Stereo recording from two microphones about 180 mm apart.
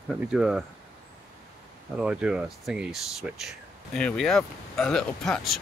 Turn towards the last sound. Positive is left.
turn(degrees=0)  # may be behind; listen again after turning